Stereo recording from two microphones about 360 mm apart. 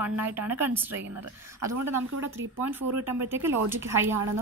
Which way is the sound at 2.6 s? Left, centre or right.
Centre.